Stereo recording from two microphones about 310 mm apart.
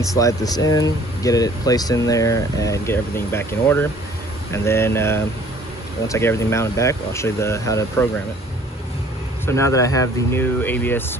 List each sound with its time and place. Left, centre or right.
0.0 s speech: centre
9.5 s speech: centre